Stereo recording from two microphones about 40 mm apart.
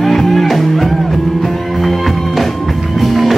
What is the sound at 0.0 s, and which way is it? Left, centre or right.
Music, centre.